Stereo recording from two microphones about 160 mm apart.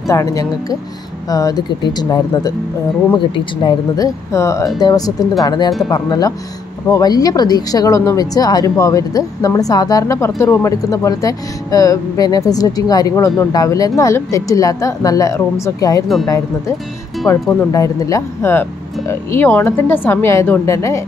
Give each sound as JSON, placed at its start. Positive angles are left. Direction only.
{"t": 0.1, "sound": "speech", "side_deg": 20}
{"t": 3.6, "sound": "speech", "side_deg": 20}
{"t": 17.3, "sound": "speech", "side_deg": 20}